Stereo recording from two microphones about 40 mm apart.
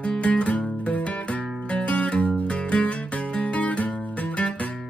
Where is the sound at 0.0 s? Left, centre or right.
Left.